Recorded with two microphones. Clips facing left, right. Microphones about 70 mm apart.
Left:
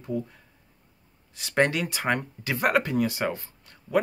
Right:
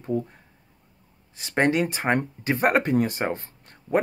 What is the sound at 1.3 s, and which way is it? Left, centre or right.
Speech, right.